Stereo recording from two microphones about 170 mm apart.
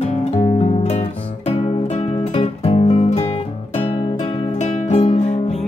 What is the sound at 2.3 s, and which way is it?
Music, 35° left (ahead or behind).